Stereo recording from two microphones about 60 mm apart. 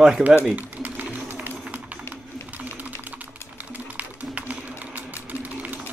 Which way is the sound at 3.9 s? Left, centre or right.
Right.